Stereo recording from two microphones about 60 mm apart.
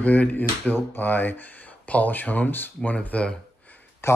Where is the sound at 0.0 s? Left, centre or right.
Left.